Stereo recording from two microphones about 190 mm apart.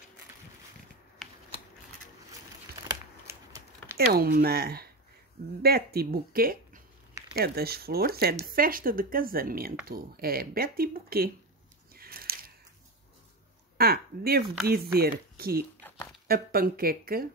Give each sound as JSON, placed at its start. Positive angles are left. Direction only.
{"t": 2.9, "sound": "a sound", "side_deg": -15}
{"t": 4.1, "sound": "speech", "side_deg": -55}
{"t": 11.9, "sound": "a sound", "side_deg": -50}
{"t": 13.7, "sound": "speech", "side_deg": -55}
{"t": 14.4, "sound": "speech", "side_deg": 0}
{"t": 15.0, "sound": "speech", "side_deg": -50}